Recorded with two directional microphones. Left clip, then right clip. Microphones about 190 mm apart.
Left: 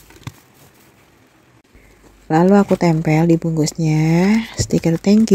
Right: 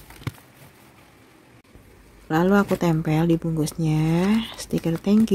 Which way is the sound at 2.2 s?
25° left (ahead or behind).